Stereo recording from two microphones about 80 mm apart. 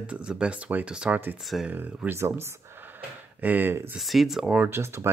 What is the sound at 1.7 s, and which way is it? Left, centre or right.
Speech, right.